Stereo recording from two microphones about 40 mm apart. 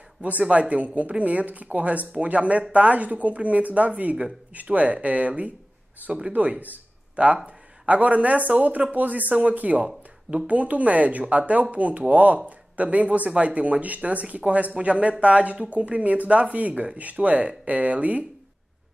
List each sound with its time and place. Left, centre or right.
0.2 s speech: right